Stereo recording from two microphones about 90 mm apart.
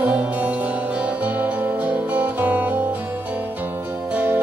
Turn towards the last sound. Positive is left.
turn(degrees=-15)  # may be behind; listen again after turning